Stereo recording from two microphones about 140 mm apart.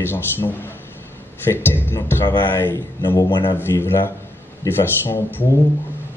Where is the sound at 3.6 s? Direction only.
15° left (ahead or behind).